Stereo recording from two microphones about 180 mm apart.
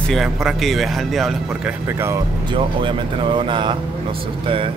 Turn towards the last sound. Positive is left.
turn(degrees=-25)  # may be behind; listen again after turning